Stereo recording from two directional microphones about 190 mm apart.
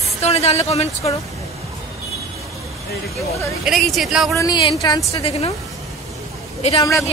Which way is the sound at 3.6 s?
Centre (ahead or behind).